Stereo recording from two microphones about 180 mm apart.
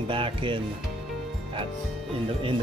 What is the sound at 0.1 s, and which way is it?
Speech, 30° right (ahead or behind).